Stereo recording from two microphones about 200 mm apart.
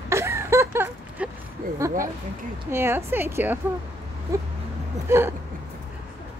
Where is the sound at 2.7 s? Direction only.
10° right (ahead or behind).